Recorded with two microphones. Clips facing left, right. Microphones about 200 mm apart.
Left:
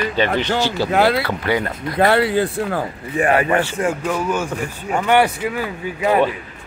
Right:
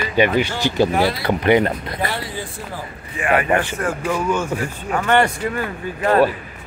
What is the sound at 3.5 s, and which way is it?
Speech, 15° right (ahead or behind).